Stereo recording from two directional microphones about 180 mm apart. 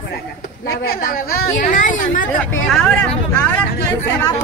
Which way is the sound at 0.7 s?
55° left (ahead or behind).